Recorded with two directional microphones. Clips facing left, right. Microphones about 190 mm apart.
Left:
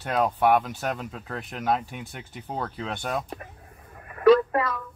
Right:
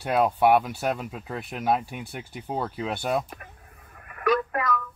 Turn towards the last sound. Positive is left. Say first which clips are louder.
# left 4 dB
turn(degrees=30)  # may be behind; listen again after turning